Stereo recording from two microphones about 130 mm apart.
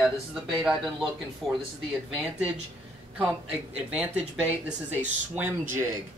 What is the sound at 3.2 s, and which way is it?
Speech, 10° right (ahead or behind).